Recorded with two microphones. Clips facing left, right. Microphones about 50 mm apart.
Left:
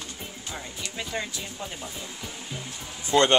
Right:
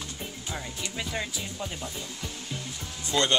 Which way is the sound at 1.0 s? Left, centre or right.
Centre.